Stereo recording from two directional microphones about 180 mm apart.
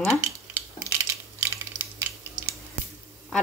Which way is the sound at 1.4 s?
15° right (ahead or behind).